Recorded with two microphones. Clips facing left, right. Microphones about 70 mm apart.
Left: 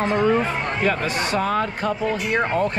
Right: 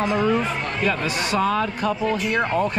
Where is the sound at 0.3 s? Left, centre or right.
Left.